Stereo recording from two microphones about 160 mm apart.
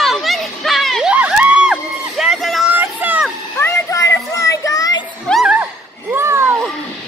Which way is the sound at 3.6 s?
20° left (ahead or behind).